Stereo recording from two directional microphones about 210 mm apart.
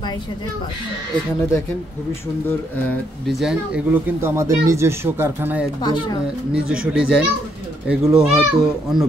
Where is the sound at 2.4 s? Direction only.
10° left (ahead or behind); by 5.7 s 10° right (ahead or behind).